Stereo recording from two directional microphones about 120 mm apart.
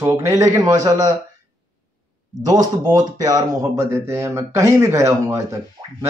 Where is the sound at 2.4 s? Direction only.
35° right (ahead or behind).